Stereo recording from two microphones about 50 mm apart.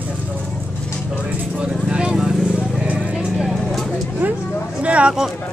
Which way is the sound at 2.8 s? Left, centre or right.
Right.